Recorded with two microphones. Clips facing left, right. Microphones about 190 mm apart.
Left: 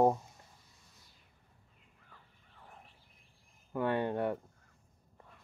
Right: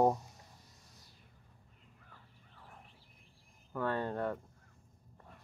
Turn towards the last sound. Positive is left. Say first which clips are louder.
# left 3 dB
turn(degrees=15)  # may be behind; listen again after turning